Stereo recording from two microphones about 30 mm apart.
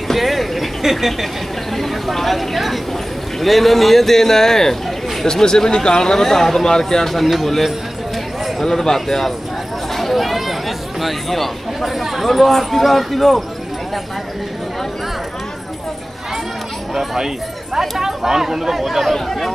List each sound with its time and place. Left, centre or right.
0.1 s a sound: centre
1.8 s speech: centre
8.5 s speech: centre
16.9 s speech: centre